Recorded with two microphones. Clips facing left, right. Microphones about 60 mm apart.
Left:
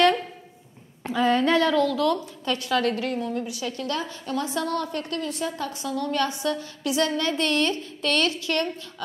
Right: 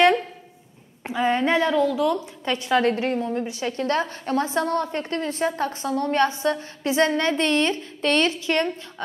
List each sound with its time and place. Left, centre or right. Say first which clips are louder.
1.0 s a woman's voice: even; right